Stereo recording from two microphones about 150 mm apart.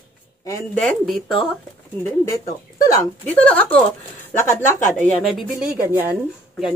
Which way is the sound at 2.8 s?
25° left (ahead or behind).